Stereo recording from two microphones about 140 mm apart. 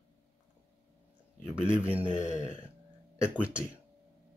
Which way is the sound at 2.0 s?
60° left (ahead or behind).